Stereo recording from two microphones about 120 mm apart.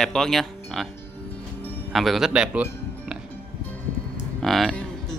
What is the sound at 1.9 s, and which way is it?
Speech, centre (ahead or behind).